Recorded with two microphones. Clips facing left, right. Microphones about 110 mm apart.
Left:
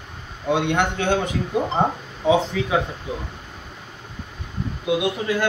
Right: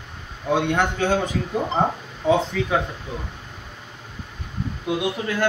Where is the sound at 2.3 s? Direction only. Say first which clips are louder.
Left 1 dB; 5° left (ahead or behind).